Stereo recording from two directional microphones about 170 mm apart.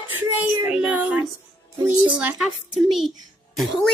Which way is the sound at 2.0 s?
5° right (ahead or behind).